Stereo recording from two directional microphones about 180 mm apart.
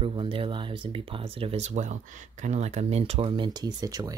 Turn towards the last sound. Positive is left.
turn(degrees=-20)  # may be behind; listen again after turning